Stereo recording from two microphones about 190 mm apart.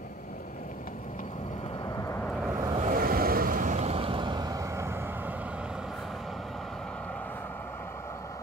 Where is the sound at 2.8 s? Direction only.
45° right (ahead or behind).